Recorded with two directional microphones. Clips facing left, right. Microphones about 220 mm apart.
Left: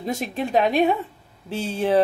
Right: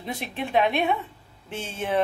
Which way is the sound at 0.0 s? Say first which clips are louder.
Left 6 dB; 45° left (ahead or behind).